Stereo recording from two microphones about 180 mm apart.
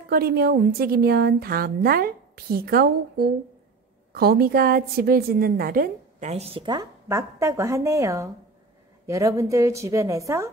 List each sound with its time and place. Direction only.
0.1 s a woman's voice: 60° right (ahead or behind); by 10.5 s 15° right (ahead or behind)